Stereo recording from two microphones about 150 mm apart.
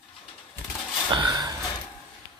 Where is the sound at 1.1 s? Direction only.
30° right (ahead or behind).